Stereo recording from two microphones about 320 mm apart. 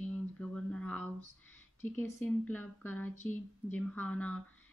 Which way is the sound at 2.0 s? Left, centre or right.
Centre.